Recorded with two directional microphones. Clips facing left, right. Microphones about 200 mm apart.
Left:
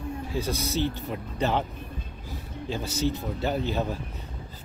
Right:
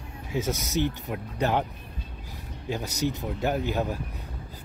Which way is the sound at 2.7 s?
15° right (ahead or behind).